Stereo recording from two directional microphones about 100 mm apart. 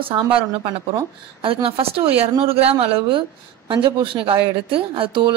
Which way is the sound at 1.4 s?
65° right (ahead or behind).